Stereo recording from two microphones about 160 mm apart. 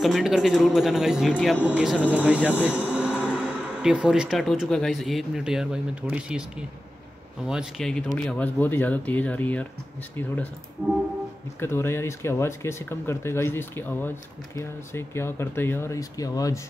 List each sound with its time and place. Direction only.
0.0 s speech: centre (ahead or behind)
7.4 s speech: centre (ahead or behind)
11.6 s speech: 15° left (ahead or behind)